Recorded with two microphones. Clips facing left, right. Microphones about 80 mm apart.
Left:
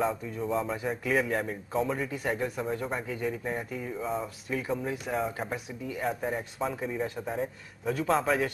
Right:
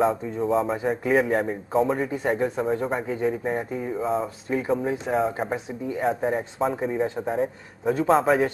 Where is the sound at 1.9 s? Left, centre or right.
Right.